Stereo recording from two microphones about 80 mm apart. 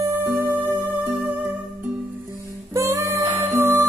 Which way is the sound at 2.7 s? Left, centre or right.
Right.